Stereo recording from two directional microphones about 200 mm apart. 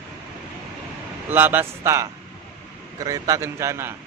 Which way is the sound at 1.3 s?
10° right (ahead or behind).